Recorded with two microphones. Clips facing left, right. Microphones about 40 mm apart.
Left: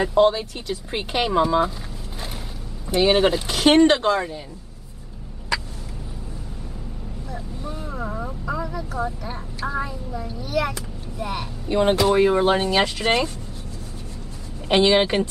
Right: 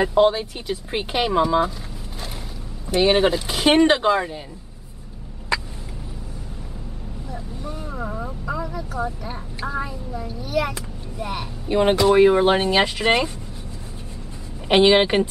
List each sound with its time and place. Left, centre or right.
0.0 s speech: centre
2.9 s a child's voice: centre
7.2 s vehicle: centre
9.0 s a child's voice: centre
14.7 s speech: centre